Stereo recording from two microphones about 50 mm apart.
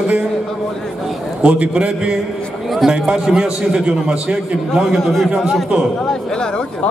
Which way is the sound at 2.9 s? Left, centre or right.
Centre.